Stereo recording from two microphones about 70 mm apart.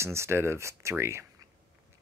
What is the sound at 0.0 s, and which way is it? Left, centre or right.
Speech, right.